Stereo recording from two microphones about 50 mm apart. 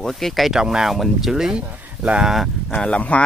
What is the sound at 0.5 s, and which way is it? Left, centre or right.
Speech, centre.